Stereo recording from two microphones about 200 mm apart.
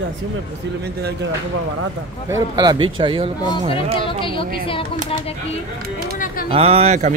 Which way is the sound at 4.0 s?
25° left (ahead or behind).